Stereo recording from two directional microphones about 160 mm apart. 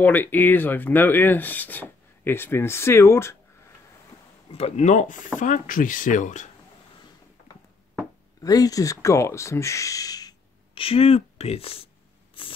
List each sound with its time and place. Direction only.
0.0 s speech: 10° left (ahead or behind)
4.5 s speech: 40° left (ahead or behind)
8.4 s speech: 20° left (ahead or behind)
12.4 s spray: 35° left (ahead or behind)